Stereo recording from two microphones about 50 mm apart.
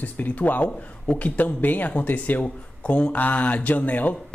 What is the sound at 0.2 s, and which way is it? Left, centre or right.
Speech, left.